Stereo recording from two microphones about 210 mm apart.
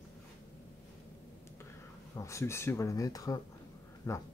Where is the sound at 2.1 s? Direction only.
15° left (ahead or behind).